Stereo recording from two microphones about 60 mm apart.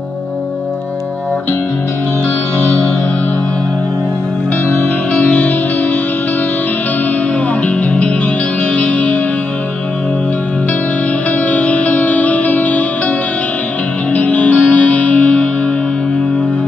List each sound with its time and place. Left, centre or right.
5.1 s music: centre
7.6 s music: centre
11.3 s music: left
14.1 s music: left